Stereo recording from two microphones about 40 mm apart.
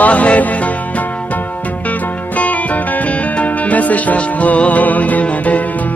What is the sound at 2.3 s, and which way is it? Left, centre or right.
Music, left.